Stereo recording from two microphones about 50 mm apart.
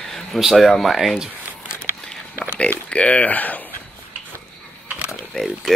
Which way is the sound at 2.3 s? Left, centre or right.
Left.